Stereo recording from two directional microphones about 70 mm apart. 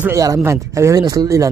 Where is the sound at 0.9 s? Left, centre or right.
Right.